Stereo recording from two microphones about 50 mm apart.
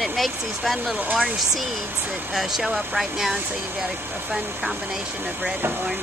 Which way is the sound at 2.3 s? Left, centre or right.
Centre.